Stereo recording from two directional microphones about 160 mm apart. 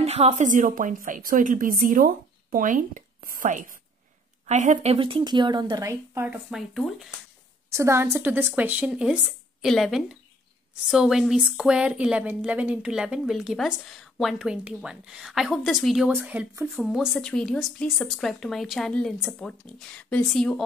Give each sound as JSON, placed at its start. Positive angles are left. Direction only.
{"t": 0.0, "sound": "a woman's voice", "side_deg": -40}
{"t": 4.9, "sound": "a woman's voice", "side_deg": -35}
{"t": 6.3, "sound": "a woman's voice", "side_deg": -5}
{"t": 7.7, "sound": "a woman's voice", "side_deg": -15}
{"t": 16.2, "sound": "a woman's voice", "side_deg": -10}